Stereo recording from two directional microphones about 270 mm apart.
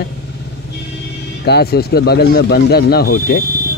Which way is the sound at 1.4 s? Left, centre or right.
Left.